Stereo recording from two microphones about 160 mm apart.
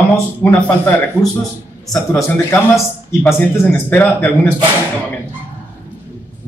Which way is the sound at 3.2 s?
15° left (ahead or behind).